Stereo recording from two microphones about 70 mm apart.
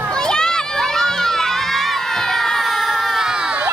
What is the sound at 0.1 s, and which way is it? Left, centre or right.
Crowd, centre.